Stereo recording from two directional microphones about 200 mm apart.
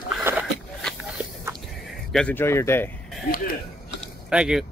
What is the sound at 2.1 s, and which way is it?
Speech, 10° left (ahead or behind).